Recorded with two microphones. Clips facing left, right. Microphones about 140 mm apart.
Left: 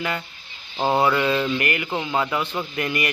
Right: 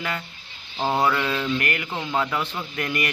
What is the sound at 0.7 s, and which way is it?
Speech, 10° left (ahead or behind).